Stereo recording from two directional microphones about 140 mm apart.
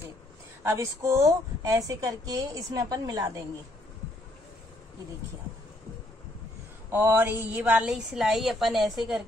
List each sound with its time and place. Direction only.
0.7 s a woman's voice: 20° right (ahead or behind)
6.9 s a woman's voice: 15° right (ahead or behind); by 9.2 s centre (ahead or behind)